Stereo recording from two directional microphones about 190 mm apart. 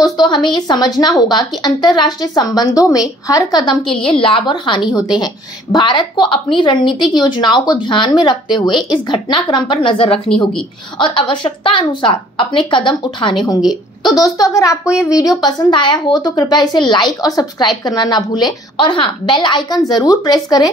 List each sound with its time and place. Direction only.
0.2 s a woman's voice: 20° left (ahead or behind)